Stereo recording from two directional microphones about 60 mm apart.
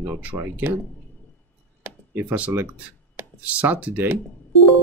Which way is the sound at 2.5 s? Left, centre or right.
Right.